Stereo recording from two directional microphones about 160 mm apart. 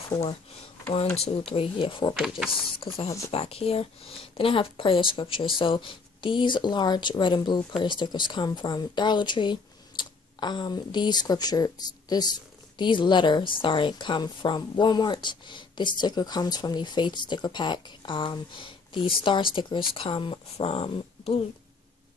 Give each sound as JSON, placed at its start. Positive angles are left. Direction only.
{"t": 1.1, "sound": "speech", "side_deg": 35}
{"t": 2.1, "sound": "speech", "side_deg": 0}
{"t": 2.8, "sound": "a woman's voice", "side_deg": 35}